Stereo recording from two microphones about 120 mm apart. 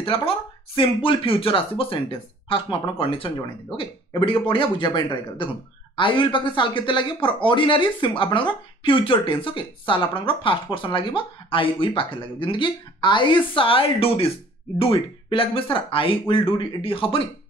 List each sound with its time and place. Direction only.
0.0 s speech: 50° left (ahead or behind)